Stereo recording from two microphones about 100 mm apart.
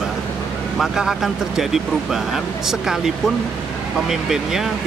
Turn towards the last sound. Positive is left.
turn(degrees=-5)  # may be behind; listen again after turning